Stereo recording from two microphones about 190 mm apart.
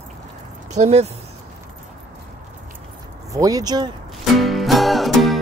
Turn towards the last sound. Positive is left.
turn(degrees=0)  # may be behind; listen again after turning